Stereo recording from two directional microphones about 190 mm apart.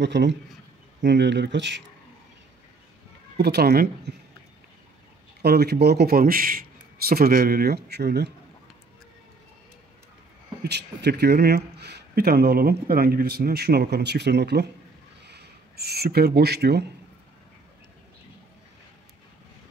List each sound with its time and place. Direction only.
0.0 s speech: 65° right (ahead or behind)
3.3 s speech: 60° right (ahead or behind)
5.4 s speech: 60° right (ahead or behind)
10.6 s speech: 60° right (ahead or behind)